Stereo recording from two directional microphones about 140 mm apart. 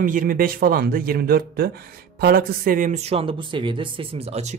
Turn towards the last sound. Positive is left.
turn(degrees=-50)  # may be behind; listen again after turning